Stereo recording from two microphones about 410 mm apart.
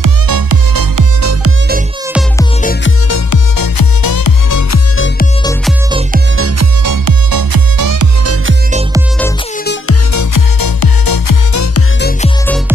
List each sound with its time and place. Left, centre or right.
0.0 s music: right
2.6 s music: left
3.1 s music: left
4.9 s music: left
5.4 s music: centre
5.9 s music: centre
6.3 s music: right
6.8 s music: right
10.1 s music: left